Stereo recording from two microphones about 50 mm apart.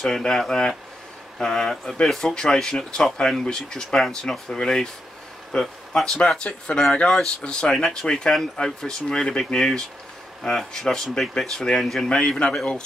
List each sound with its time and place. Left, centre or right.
0.0 s speech: centre
6.2 s speech: centre
12.1 s speech: centre